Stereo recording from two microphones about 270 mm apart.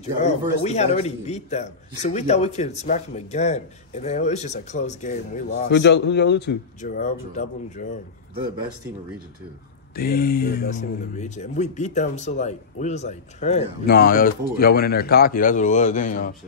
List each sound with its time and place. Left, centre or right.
0.0 s speech: left
5.7 s speech: left
9.9 s speech: left